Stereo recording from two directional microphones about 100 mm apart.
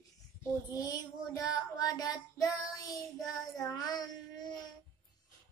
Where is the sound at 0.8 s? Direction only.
35° left (ahead or behind).